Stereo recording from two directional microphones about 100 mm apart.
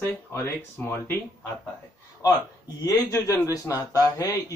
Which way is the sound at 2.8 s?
35° left (ahead or behind).